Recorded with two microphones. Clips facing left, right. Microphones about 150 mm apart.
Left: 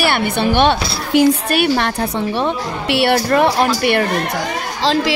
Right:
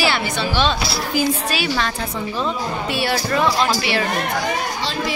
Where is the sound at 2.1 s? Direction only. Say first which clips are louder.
Left 5 dB; 70° left (ahead or behind).